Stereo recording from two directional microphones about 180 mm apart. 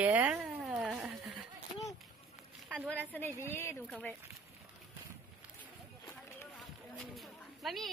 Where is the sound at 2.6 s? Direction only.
5° right (ahead or behind).